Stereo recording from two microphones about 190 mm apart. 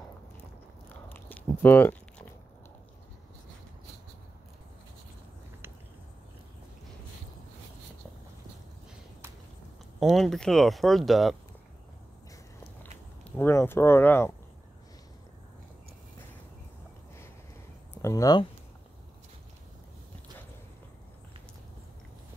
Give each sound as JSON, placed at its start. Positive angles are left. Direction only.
{"t": 1.0, "sound": "biting", "side_deg": 10}
{"t": 9.9, "sound": "speech", "side_deg": 0}
{"t": 12.8, "sound": "speech", "side_deg": 10}
{"t": 17.9, "sound": "speech", "side_deg": 15}